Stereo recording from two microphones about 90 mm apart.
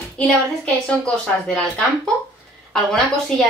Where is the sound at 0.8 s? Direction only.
5° left (ahead or behind).